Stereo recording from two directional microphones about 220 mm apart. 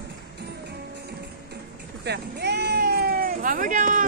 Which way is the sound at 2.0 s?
50° right (ahead or behind).